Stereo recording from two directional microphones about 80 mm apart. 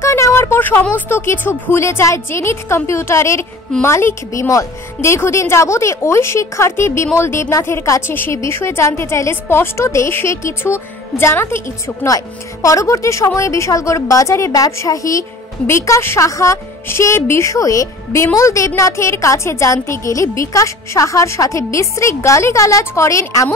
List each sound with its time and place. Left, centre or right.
0.0 s a woman's voice: left